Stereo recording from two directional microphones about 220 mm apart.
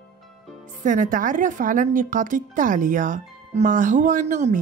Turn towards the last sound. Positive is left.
turn(degrees=-35)  # may be behind; listen again after turning